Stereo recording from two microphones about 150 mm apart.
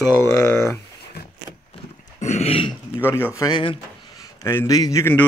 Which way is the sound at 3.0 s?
15° left (ahead or behind).